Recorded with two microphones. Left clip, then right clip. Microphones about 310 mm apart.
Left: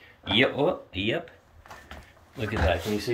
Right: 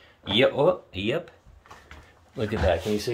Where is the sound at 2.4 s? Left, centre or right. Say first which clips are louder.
Right 2 dB; centre.